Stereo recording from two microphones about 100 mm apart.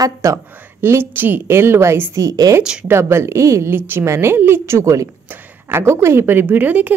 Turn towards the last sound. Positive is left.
turn(degrees=-15)  # may be behind; listen again after turning